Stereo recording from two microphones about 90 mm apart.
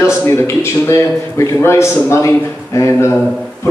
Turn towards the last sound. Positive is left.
turn(degrees=35)  # may be behind; listen again after turning